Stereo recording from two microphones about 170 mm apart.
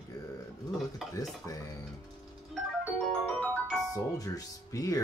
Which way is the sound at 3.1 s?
5° left (ahead or behind).